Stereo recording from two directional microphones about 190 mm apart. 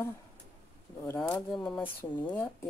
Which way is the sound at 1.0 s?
10° left (ahead or behind).